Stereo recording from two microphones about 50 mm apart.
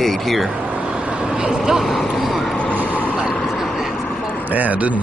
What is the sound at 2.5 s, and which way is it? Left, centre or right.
Vehicle, left.